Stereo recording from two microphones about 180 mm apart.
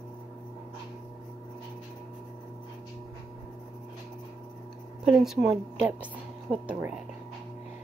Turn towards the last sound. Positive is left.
turn(degrees=-5)  # may be behind; listen again after turning